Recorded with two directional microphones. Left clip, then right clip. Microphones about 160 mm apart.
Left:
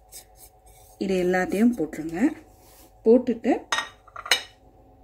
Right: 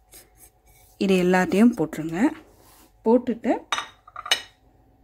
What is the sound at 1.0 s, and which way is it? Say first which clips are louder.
Speech: right 3 dB; 90° right.